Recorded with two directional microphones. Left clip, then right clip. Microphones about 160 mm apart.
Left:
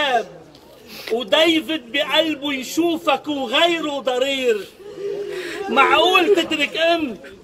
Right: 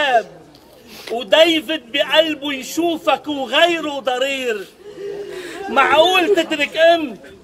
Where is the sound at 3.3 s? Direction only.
20° right (ahead or behind).